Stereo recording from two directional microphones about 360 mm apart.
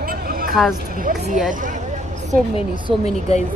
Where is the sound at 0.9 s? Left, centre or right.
Right.